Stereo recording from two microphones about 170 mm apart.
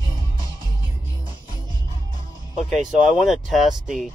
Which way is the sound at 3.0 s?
Centre (ahead or behind).